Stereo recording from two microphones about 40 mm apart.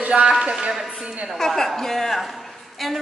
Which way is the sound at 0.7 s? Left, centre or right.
Centre.